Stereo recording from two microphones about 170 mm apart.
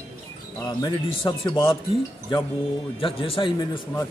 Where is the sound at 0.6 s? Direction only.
25° left (ahead or behind).